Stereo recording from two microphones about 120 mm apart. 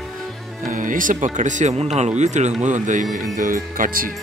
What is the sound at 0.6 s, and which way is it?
Speech, 90° right.